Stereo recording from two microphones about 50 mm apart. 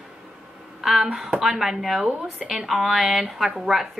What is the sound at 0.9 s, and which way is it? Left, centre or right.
Speech, centre.